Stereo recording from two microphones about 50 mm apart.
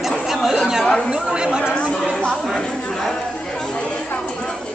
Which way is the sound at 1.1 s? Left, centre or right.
Centre.